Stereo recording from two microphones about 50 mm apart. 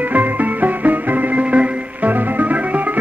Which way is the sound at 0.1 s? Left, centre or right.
Right.